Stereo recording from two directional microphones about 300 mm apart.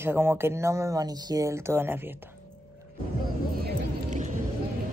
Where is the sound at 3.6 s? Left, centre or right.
Right.